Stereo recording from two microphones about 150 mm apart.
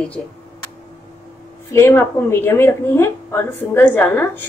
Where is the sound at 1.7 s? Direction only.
15° left (ahead or behind).